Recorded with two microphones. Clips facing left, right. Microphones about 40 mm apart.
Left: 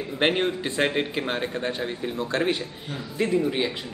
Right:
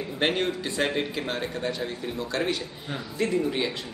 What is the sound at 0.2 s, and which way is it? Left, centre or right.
A man's voice, centre.